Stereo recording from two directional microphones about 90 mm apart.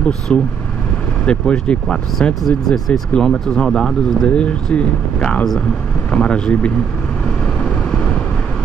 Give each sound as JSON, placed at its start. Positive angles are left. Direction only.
{"t": 0.3, "sound": "speech", "side_deg": 10}